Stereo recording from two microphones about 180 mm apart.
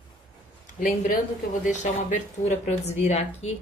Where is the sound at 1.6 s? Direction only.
45° left (ahead or behind).